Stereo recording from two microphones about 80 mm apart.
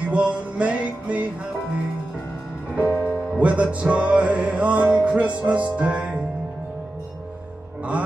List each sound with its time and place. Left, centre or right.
0.1 s music: centre
2.9 s music: centre